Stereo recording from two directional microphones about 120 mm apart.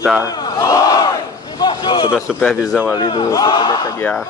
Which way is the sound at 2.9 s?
35° left (ahead or behind).